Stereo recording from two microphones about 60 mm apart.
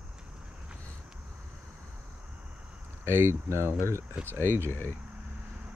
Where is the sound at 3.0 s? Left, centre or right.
Right.